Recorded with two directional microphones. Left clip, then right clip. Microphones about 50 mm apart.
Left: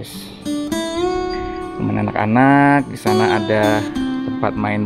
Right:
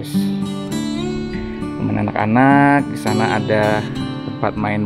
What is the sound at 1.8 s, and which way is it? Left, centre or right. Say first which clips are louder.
Speech: even; right.